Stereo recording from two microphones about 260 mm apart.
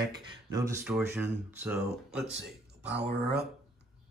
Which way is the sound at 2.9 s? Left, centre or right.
Right.